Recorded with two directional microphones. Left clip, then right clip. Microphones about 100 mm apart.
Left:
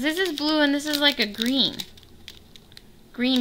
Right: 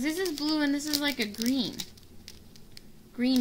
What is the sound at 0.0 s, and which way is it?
Speech, 35° left (ahead or behind).